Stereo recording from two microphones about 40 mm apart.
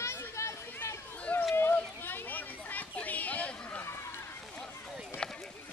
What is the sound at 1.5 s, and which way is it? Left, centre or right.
Children playing, left.